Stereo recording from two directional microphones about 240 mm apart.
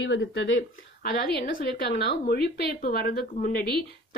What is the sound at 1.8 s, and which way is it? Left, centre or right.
A woman's voice, left.